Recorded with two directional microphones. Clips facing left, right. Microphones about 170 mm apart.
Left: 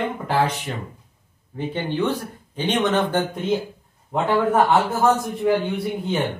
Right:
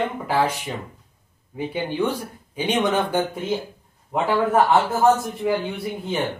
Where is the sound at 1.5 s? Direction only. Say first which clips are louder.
Even; 10° right (ahead or behind).